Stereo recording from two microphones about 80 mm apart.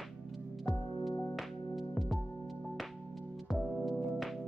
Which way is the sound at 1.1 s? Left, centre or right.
Left.